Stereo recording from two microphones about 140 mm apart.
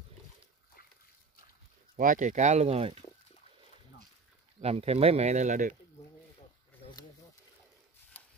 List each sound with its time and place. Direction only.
2.0 s speech: 65° right (ahead or behind); by 3.0 s 45° right (ahead or behind)
4.6 s speech: 45° right (ahead or behind)